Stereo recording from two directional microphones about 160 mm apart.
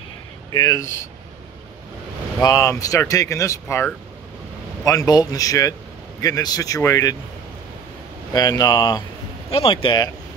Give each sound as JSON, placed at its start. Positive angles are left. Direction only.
{"t": 0.5, "sound": "speech", "side_deg": 25}
{"t": 2.4, "sound": "speech", "side_deg": 20}
{"t": 8.3, "sound": "speech", "side_deg": 25}